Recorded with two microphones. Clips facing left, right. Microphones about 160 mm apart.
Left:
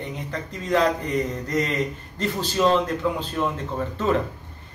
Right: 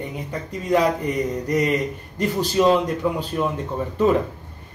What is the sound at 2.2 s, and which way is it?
Speech, 10° right (ahead or behind).